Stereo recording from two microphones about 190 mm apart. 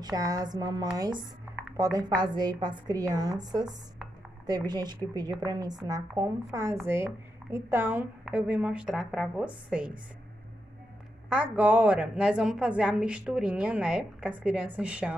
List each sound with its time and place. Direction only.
0.0 s a woman's voice: 20° right (ahead or behind)
11.2 s a woman's voice: 5° right (ahead or behind)